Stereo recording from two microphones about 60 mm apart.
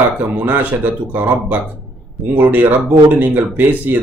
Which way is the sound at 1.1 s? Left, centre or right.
Right.